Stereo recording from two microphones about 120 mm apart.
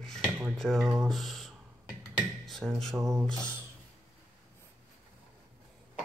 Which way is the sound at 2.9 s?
25° right (ahead or behind).